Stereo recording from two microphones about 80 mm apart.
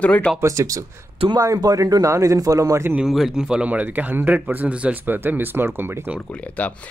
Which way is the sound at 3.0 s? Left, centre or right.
Centre.